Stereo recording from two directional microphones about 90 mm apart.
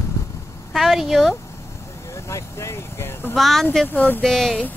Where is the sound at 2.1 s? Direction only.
30° left (ahead or behind).